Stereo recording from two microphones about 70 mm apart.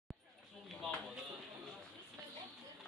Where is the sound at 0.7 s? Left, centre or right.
Centre.